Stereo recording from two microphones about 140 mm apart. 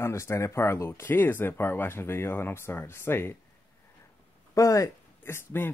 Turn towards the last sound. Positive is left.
turn(degrees=15)  # may be behind; listen again after turning